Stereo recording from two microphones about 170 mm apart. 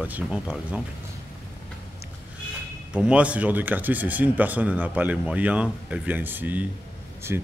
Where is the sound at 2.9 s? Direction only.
5° right (ahead or behind).